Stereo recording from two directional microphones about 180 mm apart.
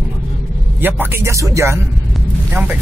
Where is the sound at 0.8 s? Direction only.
10° right (ahead or behind).